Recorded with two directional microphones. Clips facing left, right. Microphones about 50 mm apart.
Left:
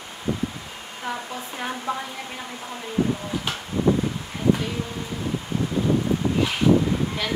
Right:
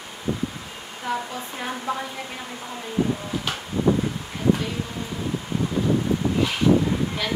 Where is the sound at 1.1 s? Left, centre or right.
Left.